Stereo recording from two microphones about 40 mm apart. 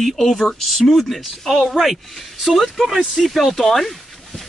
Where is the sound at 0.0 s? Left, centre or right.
Centre.